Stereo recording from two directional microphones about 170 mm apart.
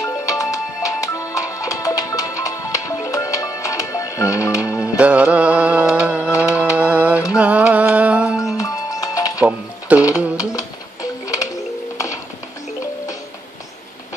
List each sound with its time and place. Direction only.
0.0 s music: 20° left (ahead or behind)
4.7 s music: 5° right (ahead or behind)
8.5 s music: 20° left (ahead or behind)
9.4 s music: 10° right (ahead or behind)
10.3 s music: 20° left (ahead or behind)